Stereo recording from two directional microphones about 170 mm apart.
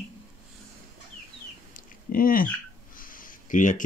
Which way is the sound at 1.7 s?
55° left (ahead or behind).